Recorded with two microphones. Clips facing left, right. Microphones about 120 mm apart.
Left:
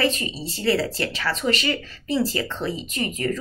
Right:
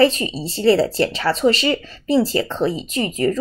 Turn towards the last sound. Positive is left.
turn(degrees=-30)  # may be behind; listen again after turning